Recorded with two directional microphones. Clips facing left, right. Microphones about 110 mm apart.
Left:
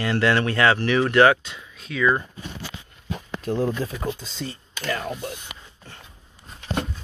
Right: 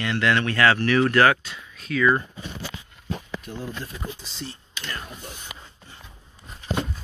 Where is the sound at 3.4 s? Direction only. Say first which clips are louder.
Left 10 dB; 90° left.